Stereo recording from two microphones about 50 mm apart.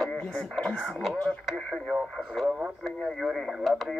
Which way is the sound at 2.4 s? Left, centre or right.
Right.